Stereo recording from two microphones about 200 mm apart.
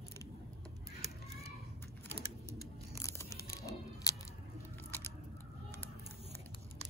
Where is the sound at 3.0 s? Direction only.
15° left (ahead or behind).